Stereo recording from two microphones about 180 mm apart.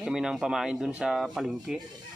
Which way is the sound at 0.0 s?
5° right (ahead or behind).